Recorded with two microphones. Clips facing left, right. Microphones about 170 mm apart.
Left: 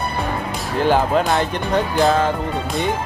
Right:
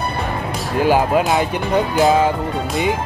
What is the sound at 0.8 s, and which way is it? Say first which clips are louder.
Speech: right 1 dB; 10° right (ahead or behind).